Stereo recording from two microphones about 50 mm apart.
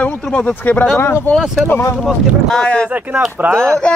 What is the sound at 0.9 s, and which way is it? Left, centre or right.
Speech, left.